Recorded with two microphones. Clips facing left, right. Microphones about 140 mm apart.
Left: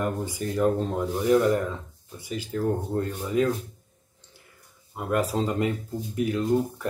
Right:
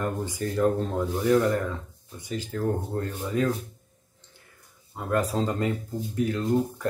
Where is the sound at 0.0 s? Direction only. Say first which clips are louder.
Left 1 dB; 10° left (ahead or behind).